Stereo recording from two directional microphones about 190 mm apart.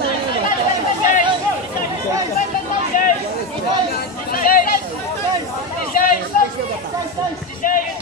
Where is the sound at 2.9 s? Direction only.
45° left (ahead or behind).